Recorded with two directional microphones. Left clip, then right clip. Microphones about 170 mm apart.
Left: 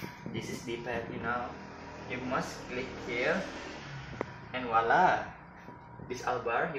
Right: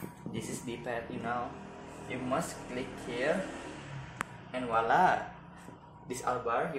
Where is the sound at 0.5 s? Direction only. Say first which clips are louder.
Left 2 dB; 20° right (ahead or behind).